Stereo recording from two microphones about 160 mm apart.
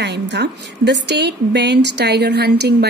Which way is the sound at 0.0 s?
90° right.